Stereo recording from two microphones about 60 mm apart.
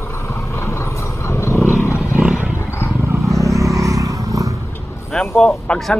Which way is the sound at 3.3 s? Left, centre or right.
Right.